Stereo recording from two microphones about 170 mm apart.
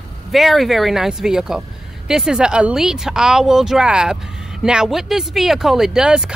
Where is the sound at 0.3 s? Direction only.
Centre (ahead or behind).